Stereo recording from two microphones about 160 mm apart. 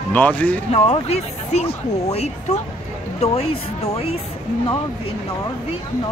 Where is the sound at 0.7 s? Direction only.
40° left (ahead or behind).